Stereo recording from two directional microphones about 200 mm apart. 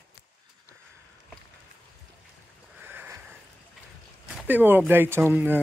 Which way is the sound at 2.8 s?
10° right (ahead or behind).